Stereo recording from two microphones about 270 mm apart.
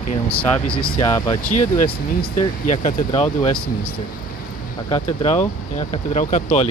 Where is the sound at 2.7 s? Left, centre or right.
Left.